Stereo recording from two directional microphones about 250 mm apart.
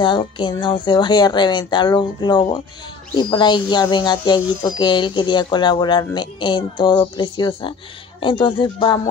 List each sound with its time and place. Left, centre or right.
0.0 s speech: centre